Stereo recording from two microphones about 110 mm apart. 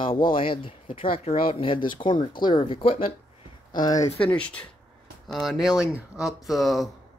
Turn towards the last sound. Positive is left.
turn(degrees=0)  # may be behind; listen again after turning